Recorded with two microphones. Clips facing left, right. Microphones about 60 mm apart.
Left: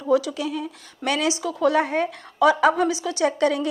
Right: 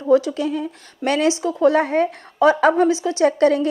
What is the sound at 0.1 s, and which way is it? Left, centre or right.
Speech, right.